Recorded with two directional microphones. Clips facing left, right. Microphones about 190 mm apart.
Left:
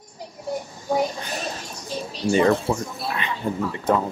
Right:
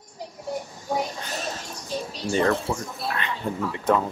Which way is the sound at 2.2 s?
20° left (ahead or behind).